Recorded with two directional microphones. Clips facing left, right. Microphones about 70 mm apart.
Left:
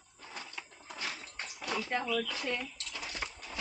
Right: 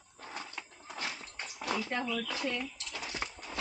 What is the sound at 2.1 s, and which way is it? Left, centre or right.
Speech, centre.